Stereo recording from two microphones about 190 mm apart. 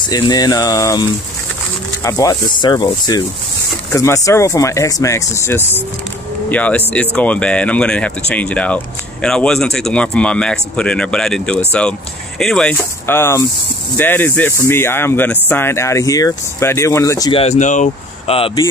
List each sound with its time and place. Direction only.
0.0 s speech: 20° left (ahead or behind)
2.0 s speech: 20° left (ahead or behind)
17.3 s speech: 35° left (ahead or behind)